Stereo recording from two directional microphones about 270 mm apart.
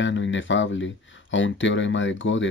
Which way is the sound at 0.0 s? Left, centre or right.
Left.